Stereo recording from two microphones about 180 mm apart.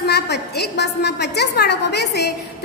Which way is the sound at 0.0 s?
65° left (ahead or behind).